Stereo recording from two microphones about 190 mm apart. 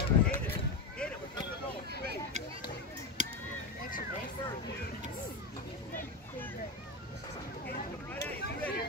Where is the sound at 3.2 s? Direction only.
40° right (ahead or behind).